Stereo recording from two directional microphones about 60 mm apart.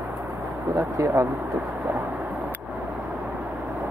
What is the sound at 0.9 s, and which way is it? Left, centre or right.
Speech, right.